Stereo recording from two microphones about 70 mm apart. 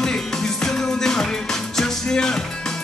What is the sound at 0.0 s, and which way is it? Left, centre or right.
Music, centre.